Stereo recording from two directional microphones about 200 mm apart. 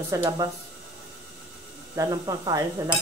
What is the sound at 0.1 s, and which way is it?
Speech, 20° right (ahead or behind).